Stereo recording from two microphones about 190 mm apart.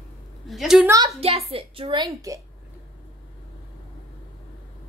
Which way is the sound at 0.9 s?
25° right (ahead or behind).